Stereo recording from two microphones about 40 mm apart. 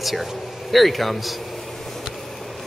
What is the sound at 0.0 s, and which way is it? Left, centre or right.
Speech, centre.